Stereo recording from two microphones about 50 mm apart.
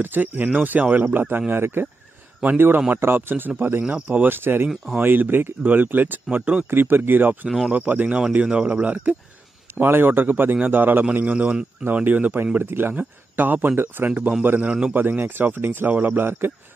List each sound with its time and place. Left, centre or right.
0.0 s speech: right
1.0 s speech: right
4.3 s speech: right
6.3 s speech: right
6.7 s speech: right
7.4 s speech: centre
7.7 s speech: right
8.5 s speech: centre
8.8 s speech: right
9.8 s speech: right
12.5 s speech: right
14.7 s speech: right
15.0 s speech: right